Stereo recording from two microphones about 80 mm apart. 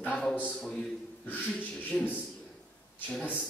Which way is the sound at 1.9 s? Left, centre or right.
Left.